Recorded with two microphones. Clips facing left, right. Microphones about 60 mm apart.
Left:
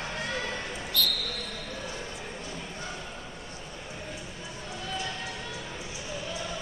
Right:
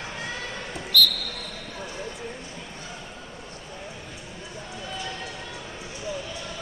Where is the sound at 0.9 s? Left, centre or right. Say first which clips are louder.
Right 8 dB; left.